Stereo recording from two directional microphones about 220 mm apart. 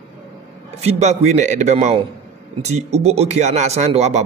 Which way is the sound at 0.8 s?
30° right (ahead or behind).